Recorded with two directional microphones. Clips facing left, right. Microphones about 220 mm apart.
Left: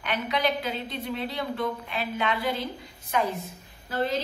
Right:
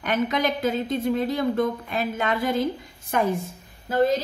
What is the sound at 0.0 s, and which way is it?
A woman's voice, 45° right (ahead or behind).